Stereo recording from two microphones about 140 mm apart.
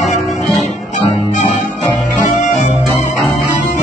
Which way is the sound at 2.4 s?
60° left (ahead or behind).